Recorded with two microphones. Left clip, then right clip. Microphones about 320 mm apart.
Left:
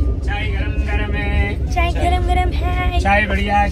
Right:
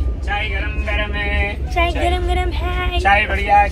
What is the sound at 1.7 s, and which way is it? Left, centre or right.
Speech, centre.